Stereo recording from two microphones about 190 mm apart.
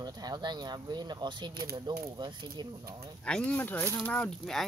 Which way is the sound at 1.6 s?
55° right (ahead or behind).